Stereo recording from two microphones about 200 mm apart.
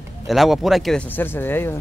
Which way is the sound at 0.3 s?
Centre (ahead or behind).